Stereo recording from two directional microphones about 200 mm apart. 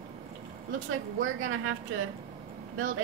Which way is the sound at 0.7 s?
85° right.